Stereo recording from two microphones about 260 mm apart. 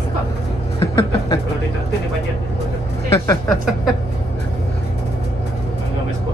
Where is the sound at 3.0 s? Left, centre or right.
Centre.